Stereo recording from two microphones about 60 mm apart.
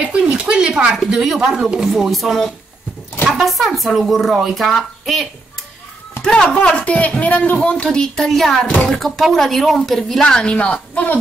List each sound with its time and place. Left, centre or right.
0.2 s speech: centre
1.9 s a woman's voice: centre
3.4 s a woman's voice: centre
6.2 s a woman's voice: centre
8.2 s a woman's voice: centre
10.2 s speech: centre